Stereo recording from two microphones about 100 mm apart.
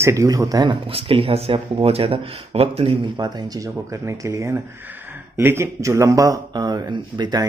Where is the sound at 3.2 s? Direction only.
50° right (ahead or behind).